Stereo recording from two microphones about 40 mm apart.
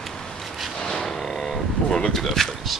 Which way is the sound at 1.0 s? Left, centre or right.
Centre.